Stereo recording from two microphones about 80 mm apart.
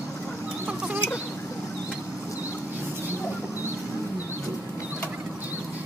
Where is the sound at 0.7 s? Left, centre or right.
Centre.